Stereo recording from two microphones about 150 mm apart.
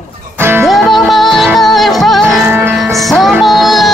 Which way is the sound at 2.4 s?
15° right (ahead or behind).